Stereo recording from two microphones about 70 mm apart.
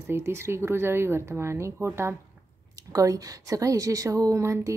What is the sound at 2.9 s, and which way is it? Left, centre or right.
A woman's voice, right.